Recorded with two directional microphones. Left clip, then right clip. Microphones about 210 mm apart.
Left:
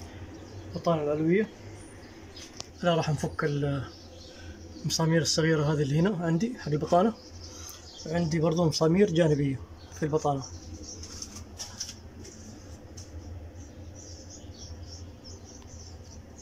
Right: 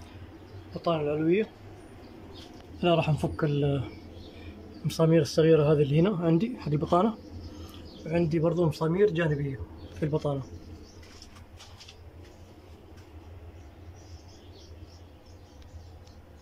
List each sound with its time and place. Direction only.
0.8 s a man's voice: 5° right (ahead or behind)
2.8 s speech: 5° right (ahead or behind)
4.8 s speech: 10° right (ahead or behind)
8.1 s speech: 15° right (ahead or behind)
8.5 s speech: 25° right (ahead or behind)
8.8 s a man's voice: 5° left (ahead or behind)